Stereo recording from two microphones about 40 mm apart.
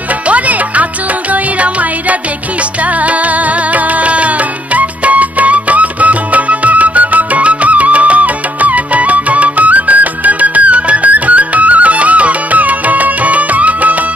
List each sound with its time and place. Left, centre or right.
0.3 s music: right